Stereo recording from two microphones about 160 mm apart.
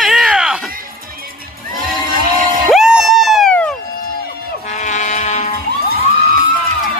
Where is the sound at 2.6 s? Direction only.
5° right (ahead or behind).